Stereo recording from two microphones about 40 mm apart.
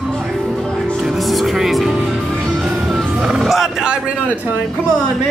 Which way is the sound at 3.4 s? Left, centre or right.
Centre.